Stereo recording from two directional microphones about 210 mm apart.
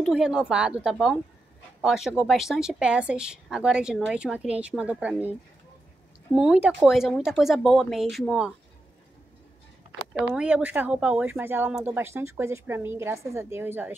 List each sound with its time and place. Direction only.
0.0 s speech: 5° right (ahead or behind)
6.3 s speech: 5° right (ahead or behind)
10.3 s speech: 5° right (ahead or behind)